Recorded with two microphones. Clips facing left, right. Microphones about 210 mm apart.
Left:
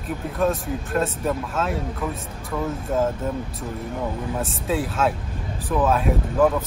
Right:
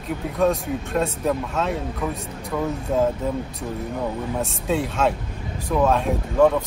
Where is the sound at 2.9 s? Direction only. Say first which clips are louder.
Right 2 dB; centre (ahead or behind).